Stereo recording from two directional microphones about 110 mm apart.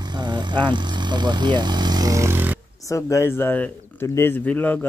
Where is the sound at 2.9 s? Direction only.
30° left (ahead or behind).